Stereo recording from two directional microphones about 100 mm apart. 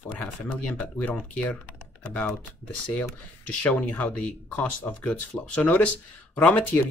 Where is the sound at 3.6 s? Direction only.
15° left (ahead or behind).